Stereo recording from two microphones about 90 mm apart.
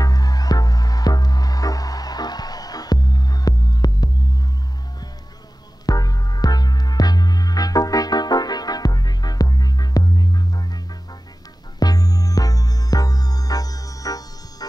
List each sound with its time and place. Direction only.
0.0 s music: 45° left (ahead or behind)
5.9 s music: 45° left (ahead or behind)
11.8 s music: 45° left (ahead or behind)